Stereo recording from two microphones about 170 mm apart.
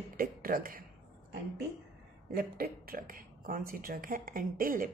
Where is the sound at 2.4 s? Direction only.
60° right (ahead or behind).